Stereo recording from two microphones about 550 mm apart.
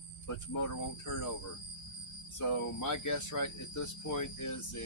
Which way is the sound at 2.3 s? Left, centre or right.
Left.